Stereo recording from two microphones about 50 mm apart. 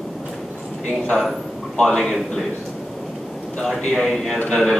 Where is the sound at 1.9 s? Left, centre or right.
Centre.